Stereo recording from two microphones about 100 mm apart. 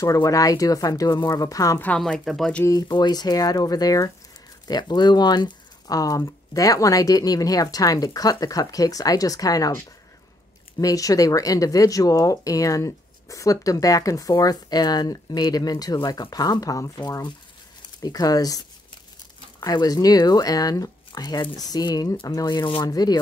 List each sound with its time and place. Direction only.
0.0 s speech: 35° left (ahead or behind)
2.0 s speech: 5° left (ahead or behind)
2.9 s speech: 45° left (ahead or behind)
10.8 s speech: 35° left (ahead or behind)